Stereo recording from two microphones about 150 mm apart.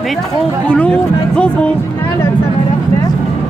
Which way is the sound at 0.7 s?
5° left (ahead or behind).